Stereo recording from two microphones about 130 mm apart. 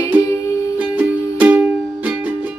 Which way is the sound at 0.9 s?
10° right (ahead or behind).